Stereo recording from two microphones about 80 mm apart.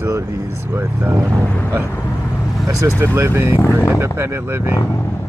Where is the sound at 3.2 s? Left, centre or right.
Right.